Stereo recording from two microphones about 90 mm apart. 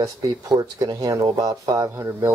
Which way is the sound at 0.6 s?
45° right (ahead or behind).